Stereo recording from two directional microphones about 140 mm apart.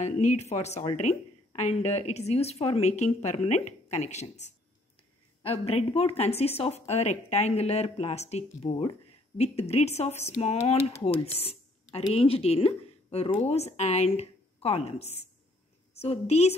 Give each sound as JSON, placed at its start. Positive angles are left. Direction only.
{"t": 0.0, "sound": "speech", "side_deg": 60}